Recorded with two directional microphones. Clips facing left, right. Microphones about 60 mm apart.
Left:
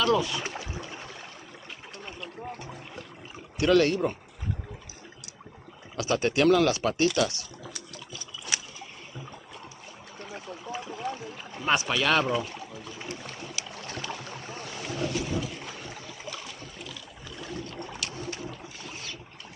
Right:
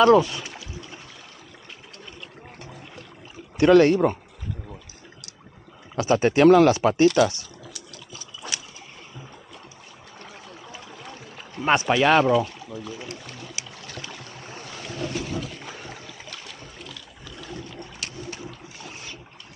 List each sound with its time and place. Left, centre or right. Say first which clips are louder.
0.0 s speech: right 9 dB; right
0.4 s boat: left 2 dB; left
3.5 s speech: right 7 dB; right
5.9 s speech: right 6 dB; right
10.1 s a sound: left 3 dB; centre
11.6 s speech: right 5 dB; right
11.9 s speech: right 9 dB; right
13.0 s a sound: right 1 dB; centre
13.7 s boat: left 2 dB; left
15.6 s trickle: right 2 dB; centre
16.3 s boat: left 1 dB; centre
17.4 s boat: even; centre